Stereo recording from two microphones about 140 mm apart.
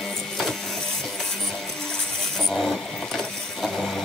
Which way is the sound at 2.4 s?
Centre (ahead or behind).